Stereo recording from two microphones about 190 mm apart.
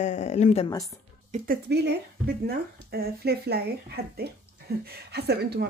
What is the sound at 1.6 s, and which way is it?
Speech, 60° right (ahead or behind).